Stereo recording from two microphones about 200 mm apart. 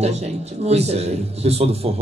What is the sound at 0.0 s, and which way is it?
A man's voice, 35° right (ahead or behind).